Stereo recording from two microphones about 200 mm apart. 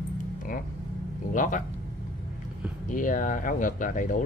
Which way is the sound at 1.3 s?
40° left (ahead or behind).